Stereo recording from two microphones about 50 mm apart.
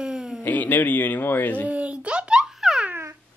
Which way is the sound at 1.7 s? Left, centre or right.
Right.